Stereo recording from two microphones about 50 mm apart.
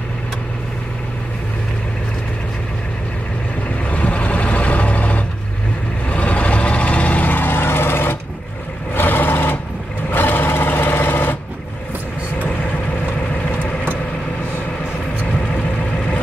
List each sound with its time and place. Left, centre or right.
3.9 s vehicle: left